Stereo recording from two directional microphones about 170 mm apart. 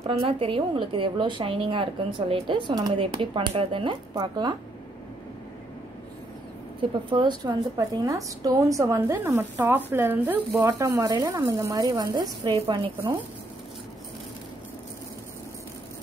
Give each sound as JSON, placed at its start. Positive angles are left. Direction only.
{"t": 0.0, "sound": "a woman's voice", "side_deg": -35}
{"t": 6.8, "sound": "a woman's voice", "side_deg": -30}
{"t": 11.0, "sound": "speech", "side_deg": -20}